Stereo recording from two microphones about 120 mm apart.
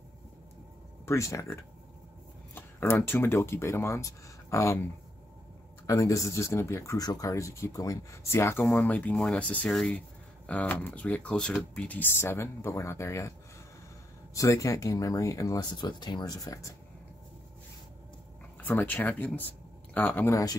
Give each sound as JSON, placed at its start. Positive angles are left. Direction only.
{"t": 1.0, "sound": "speech", "side_deg": 25}
{"t": 5.9, "sound": "speech", "side_deg": 25}
{"t": 8.6, "sound": "speech", "side_deg": 10}
{"t": 14.3, "sound": "speech", "side_deg": 25}
{"t": 18.6, "sound": "speech", "side_deg": 15}